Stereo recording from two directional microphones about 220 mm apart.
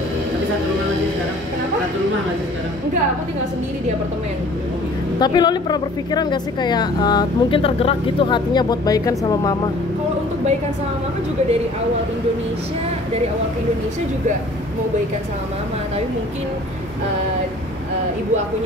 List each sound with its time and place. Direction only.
5.2 s a woman's voice: 20° left (ahead or behind)